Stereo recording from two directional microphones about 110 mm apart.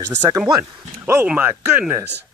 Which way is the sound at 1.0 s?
20° right (ahead or behind).